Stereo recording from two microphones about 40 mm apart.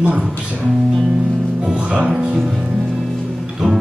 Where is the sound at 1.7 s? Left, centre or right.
Right.